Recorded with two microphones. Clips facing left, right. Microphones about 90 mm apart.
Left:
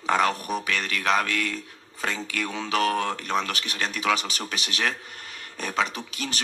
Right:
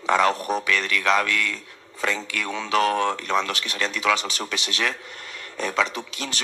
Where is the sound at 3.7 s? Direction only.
40° left (ahead or behind).